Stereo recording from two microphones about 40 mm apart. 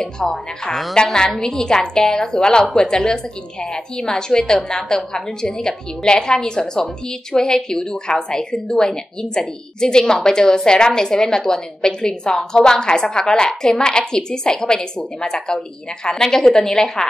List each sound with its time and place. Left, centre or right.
0.0 s a woman's voice: centre